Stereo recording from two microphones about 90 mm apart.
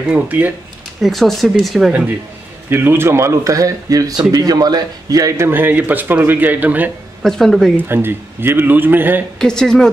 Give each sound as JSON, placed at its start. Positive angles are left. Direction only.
{"t": 0.1, "sound": "a man's voice", "side_deg": -20}
{"t": 1.0, "sound": "speech", "side_deg": 0}
{"t": 2.7, "sound": "a man's voice", "side_deg": -25}
{"t": 5.5, "sound": "a man's voice", "side_deg": -20}
{"t": 7.2, "sound": "speech", "side_deg": 5}
{"t": 7.7, "sound": "a man's voice", "side_deg": -25}
{"t": 9.4, "sound": "speech", "side_deg": 5}